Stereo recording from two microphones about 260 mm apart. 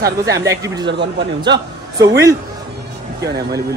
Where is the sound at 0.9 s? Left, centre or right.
Right.